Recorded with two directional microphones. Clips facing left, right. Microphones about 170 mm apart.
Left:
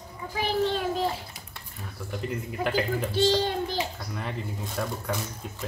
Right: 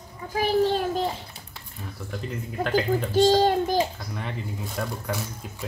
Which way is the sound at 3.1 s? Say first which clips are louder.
Right 6 dB; 45° right (ahead or behind).